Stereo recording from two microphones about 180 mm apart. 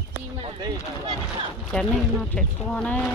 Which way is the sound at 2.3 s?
5° left (ahead or behind).